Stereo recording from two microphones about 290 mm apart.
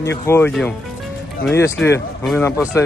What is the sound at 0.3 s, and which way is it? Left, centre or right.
Speech, centre.